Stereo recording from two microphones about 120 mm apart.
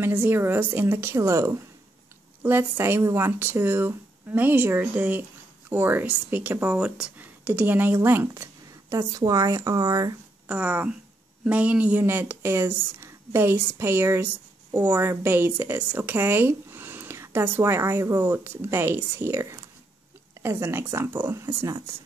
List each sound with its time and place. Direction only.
0.0 s speech: 20° right (ahead or behind)
8.9 s speech: 30° right (ahead or behind)
10.5 s speech: 10° right (ahead or behind)